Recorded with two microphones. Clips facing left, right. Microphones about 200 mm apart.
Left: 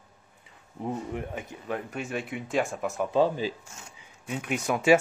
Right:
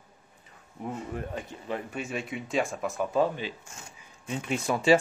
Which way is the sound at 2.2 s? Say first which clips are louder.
Left 1 dB; 5° left (ahead or behind).